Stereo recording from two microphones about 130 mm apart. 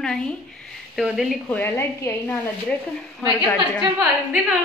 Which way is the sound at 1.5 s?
15° left (ahead or behind).